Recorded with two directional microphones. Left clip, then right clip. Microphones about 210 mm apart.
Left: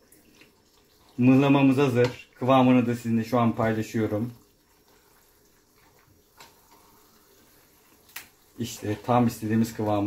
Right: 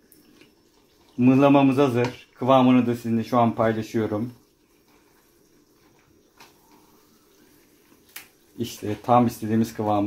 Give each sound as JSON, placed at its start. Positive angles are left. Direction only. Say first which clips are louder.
{"t": 1.2, "sound": "speech", "louder": "right 3 dB", "side_deg": -30}
{"t": 8.5, "sound": "speech", "louder": "right 2 dB", "side_deg": -35}